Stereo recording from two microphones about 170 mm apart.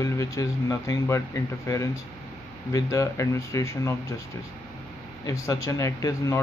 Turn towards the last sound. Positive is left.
turn(degrees=20)  # may be behind; listen again after turning